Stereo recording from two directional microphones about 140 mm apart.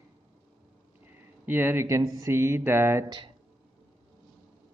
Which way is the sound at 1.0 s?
15° right (ahead or behind).